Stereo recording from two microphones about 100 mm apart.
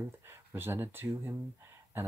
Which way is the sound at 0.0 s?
25° right (ahead or behind).